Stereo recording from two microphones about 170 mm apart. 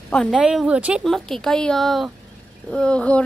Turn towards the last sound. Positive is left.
turn(degrees=5)  # may be behind; listen again after turning